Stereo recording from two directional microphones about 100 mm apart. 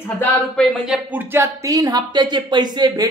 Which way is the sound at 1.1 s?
25° right (ahead or behind).